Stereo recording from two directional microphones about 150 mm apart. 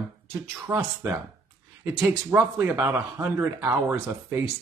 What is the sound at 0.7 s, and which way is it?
Speech, 15° right (ahead or behind).